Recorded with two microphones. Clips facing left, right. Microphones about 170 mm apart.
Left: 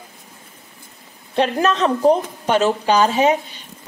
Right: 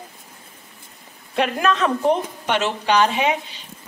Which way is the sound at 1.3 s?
30° left (ahead or behind).